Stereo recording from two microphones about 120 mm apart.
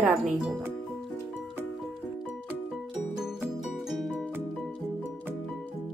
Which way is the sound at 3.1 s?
5° right (ahead or behind).